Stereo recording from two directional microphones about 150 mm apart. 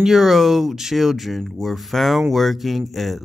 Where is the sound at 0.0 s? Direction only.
5° right (ahead or behind).